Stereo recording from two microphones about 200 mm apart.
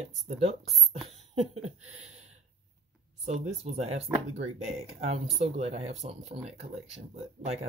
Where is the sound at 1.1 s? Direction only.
30° right (ahead or behind).